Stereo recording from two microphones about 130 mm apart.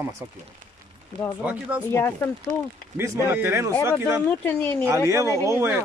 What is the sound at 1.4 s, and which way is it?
Speech, 15° right (ahead or behind).